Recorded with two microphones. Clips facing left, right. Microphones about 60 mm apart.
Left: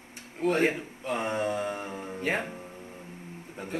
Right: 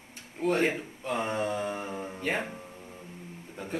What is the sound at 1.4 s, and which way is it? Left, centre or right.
Speech, left.